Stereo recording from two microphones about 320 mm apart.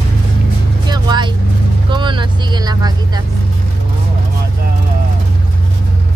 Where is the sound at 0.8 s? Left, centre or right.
Centre.